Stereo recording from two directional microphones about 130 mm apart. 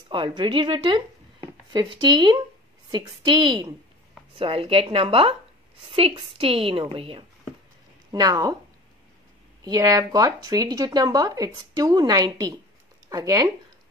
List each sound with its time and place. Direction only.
0.1 s a woman's voice: 35° right (ahead or behind)
4.4 s a woman's voice: 50° right (ahead or behind)
8.1 s speech: 30° right (ahead or behind)
9.7 s speech: 25° right (ahead or behind)